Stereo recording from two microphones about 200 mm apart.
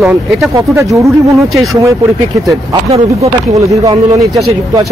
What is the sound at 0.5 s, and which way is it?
Speech, 15° right (ahead or behind).